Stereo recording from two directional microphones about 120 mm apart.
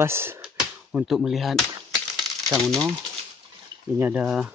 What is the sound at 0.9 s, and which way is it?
Speech, 5° right (ahead or behind).